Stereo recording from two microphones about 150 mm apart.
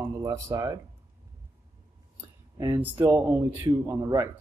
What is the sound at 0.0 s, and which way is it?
Speech, 20° right (ahead or behind).